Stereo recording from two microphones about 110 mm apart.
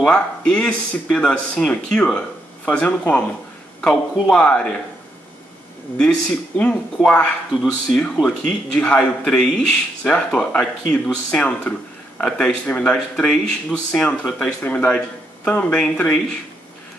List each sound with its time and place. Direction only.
0.0 s speech: 5° left (ahead or behind)
5.9 s speech: 10° left (ahead or behind)